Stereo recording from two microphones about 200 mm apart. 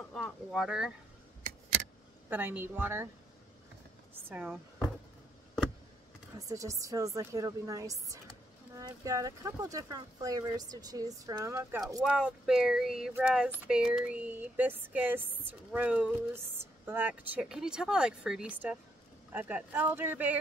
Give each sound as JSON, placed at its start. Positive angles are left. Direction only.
{"t": 0.1, "sound": "speech", "side_deg": 0}
{"t": 2.2, "sound": "speech", "side_deg": -10}
{"t": 4.1, "sound": "speech", "side_deg": -10}
{"t": 6.3, "sound": "speech", "side_deg": -15}
{"t": 12.0, "sound": "speech", "side_deg": -5}